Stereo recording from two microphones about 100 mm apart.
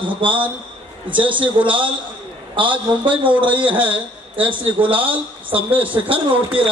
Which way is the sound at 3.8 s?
15° right (ahead or behind).